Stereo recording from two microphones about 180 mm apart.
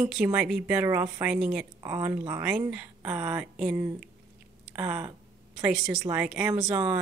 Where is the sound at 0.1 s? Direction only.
5° right (ahead or behind).